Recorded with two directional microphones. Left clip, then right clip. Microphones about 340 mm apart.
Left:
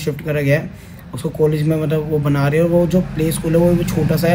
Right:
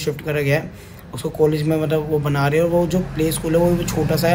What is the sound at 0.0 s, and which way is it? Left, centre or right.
A man's voice, centre.